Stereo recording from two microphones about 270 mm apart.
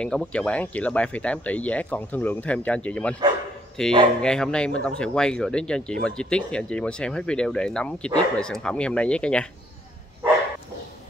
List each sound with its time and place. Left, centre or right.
0.0 s speech: centre